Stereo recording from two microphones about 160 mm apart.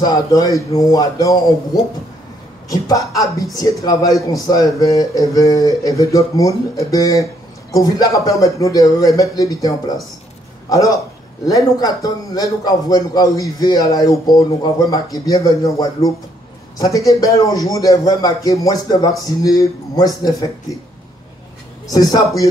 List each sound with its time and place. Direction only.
0.0 s speech: 25° left (ahead or behind)
11.4 s speech: 25° left (ahead or behind)
21.9 s speech: 25° left (ahead or behind)